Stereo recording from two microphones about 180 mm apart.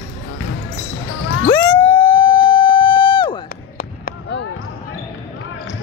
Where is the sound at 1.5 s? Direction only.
25° left (ahead or behind).